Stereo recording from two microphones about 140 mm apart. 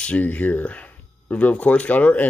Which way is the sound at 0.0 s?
10° left (ahead or behind).